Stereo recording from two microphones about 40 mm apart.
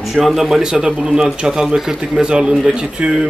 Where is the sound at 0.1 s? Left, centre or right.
Centre.